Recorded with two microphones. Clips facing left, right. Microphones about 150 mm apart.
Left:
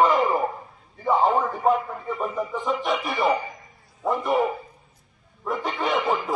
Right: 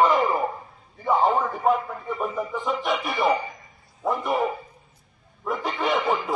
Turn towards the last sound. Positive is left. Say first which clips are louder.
# even
turn(degrees=0)  # may be behind; listen again after turning